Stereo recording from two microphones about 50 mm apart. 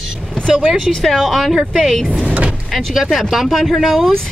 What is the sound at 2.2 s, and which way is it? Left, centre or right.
Vehicle, right.